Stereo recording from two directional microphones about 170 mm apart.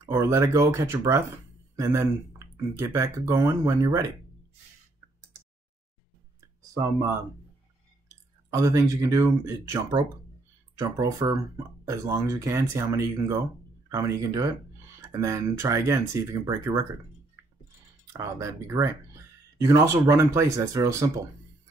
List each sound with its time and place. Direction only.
0.0 s speech: 15° right (ahead or behind)
6.4 s a sound: 15° right (ahead or behind)
8.5 s speech: 20° right (ahead or behind)
18.1 s speech: 15° right (ahead or behind)